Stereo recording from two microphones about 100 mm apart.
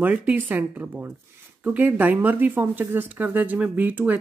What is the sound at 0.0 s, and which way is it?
Speech, 15° right (ahead or behind).